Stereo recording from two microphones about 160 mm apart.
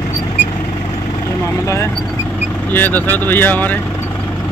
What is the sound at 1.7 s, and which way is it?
Vehicle, 15° left (ahead or behind).